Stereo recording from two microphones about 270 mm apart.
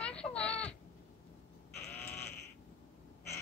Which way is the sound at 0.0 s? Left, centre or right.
Centre.